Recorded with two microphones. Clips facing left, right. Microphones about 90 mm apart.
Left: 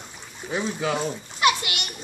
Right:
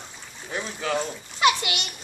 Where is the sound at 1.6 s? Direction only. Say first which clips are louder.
Right 2 dB; 25° right (ahead or behind).